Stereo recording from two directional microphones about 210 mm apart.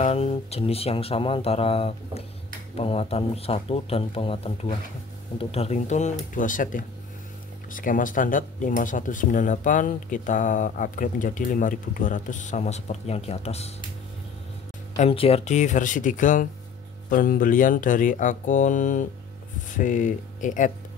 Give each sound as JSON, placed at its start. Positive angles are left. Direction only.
{"t": 0.0, "sound": "speech", "side_deg": 30}
{"t": 15.0, "sound": "speech", "side_deg": 25}